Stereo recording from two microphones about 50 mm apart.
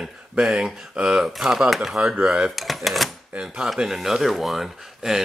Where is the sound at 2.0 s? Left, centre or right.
Centre.